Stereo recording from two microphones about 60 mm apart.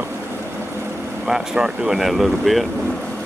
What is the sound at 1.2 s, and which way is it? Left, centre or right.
Speech, centre.